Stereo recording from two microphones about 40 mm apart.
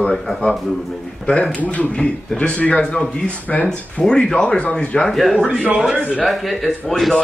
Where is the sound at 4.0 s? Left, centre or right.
Centre.